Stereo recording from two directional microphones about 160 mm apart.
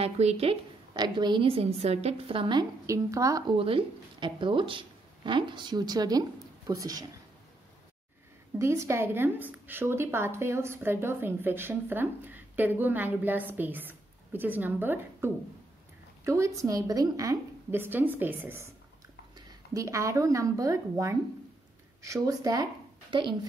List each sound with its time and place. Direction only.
0.0 s a woman's voice: 40° right (ahead or behind)
0.9 s a woman's voice: 25° right (ahead or behind)
2.9 s speech: 20° right (ahead or behind)
3.5 s speech: 35° right (ahead or behind)
8.5 s a woman's voice: 15° right (ahead or behind)